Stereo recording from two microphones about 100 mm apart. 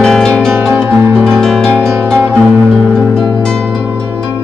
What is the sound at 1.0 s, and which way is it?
Music, 25° right (ahead or behind).